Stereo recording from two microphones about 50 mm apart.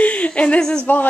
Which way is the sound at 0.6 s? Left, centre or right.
Centre.